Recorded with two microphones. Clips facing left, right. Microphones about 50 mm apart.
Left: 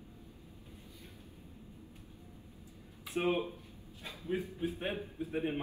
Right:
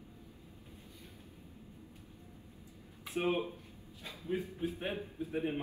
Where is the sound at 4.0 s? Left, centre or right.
Left.